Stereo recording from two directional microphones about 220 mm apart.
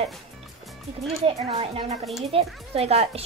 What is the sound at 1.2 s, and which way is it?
A child's voice, 25° right (ahead or behind).